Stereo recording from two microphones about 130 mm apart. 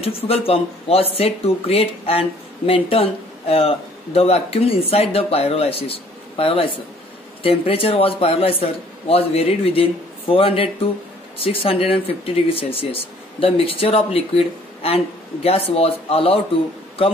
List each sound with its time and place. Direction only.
0.0 s speech: 50° left (ahead or behind)